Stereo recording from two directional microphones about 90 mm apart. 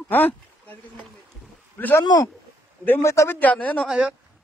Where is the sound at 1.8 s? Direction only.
20° left (ahead or behind).